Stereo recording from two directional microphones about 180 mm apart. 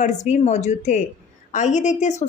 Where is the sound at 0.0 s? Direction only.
40° left (ahead or behind).